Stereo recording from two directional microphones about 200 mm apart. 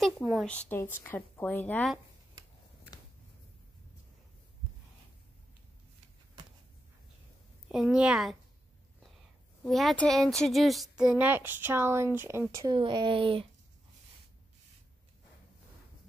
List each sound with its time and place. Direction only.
0.2 s a woman's voice: centre (ahead or behind)
7.7 s a woman's voice: 5° right (ahead or behind)
9.6 s speech: centre (ahead or behind); by 13.5 s 25° right (ahead or behind)